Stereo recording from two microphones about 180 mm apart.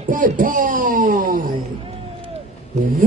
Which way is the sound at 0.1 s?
50° right (ahead or behind).